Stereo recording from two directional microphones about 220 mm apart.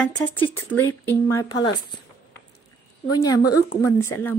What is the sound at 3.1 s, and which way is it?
Speech, 15° left (ahead or behind).